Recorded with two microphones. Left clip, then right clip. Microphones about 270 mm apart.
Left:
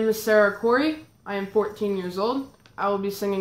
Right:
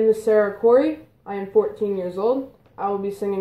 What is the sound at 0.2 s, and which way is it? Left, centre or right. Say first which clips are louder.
Speech: right 2 dB; left.